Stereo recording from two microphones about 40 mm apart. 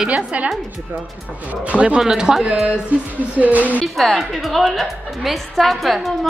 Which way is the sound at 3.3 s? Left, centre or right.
Right.